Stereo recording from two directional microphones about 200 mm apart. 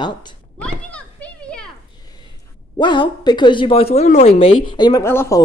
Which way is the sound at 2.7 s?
25° left (ahead or behind).